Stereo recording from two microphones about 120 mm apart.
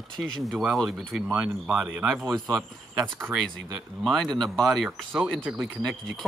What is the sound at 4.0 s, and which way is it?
Speech, 5° left (ahead or behind).